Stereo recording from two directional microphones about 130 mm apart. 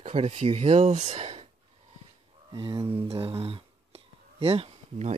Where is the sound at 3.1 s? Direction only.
50° right (ahead or behind).